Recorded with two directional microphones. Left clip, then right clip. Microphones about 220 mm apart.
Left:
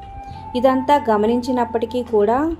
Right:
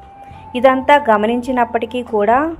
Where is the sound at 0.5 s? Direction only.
5° right (ahead or behind).